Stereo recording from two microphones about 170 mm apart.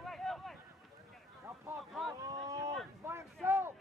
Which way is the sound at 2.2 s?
20° right (ahead or behind).